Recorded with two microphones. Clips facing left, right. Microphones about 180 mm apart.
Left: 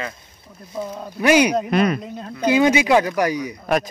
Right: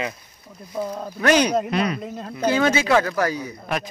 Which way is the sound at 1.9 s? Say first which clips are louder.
Even; centre (ahead or behind).